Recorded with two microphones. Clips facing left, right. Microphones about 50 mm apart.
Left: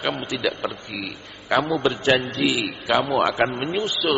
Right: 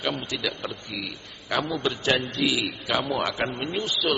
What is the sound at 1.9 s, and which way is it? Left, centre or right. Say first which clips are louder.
A man's voice: left 5 dB; centre.